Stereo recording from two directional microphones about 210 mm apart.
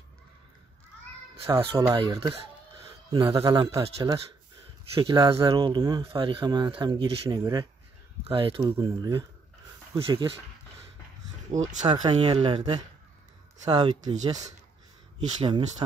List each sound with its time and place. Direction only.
1.5 s speech: 15° right (ahead or behind)
3.3 s speech: 15° right (ahead or behind)
4.9 s speech: 20° right (ahead or behind)
11.6 s speech: 20° right (ahead or behind)
15.1 s speech: 20° right (ahead or behind)